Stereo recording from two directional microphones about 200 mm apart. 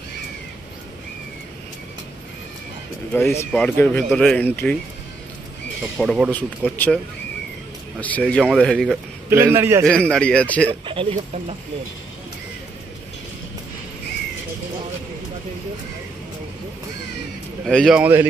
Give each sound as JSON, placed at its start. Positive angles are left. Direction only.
{"t": 3.1, "sound": "speech", "side_deg": 5}
{"t": 5.9, "sound": "speech", "side_deg": 0}
{"t": 8.0, "sound": "speech", "side_deg": 5}
{"t": 9.3, "sound": "a man's voice", "side_deg": -10}
{"t": 9.8, "sound": "speech", "side_deg": 5}
{"t": 10.9, "sound": "speech", "side_deg": -25}
{"t": 17.6, "sound": "speech", "side_deg": 0}